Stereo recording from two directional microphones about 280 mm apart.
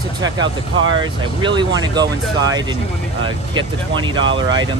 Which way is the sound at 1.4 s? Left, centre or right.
Centre.